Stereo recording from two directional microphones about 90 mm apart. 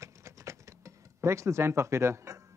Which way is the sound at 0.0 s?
35° right (ahead or behind).